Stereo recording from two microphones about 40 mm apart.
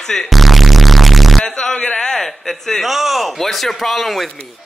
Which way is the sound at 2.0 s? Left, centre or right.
Centre.